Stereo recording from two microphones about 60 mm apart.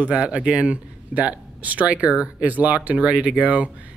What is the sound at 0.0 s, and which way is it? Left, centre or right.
A man's voice, right.